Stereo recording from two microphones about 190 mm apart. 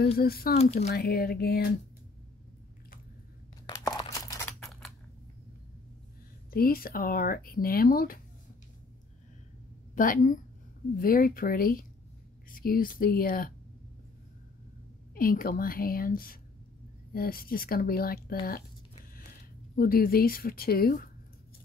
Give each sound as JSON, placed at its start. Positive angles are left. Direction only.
{"t": 0.2, "sound": "speech", "side_deg": 50}
{"t": 3.6, "sound": "tearing", "side_deg": 20}
{"t": 6.5, "sound": "speech", "side_deg": 50}
{"t": 9.9, "sound": "speech", "side_deg": 45}
{"t": 15.1, "sound": "speech", "side_deg": 50}
{"t": 19.7, "sound": "speech", "side_deg": 50}